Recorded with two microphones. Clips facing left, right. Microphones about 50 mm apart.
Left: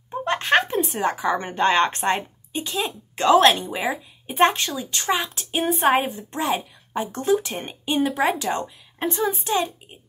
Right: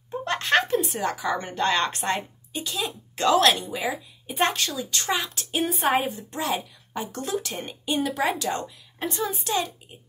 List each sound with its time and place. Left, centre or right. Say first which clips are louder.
0.2 s a sound: left 3 dB; left
1.0 s a woman's voice: left 4 dB; left
6.3 s a woman's voice: left 5 dB; left